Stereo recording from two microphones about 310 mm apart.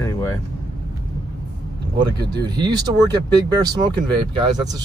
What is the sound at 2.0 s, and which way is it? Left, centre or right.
Speech, centre.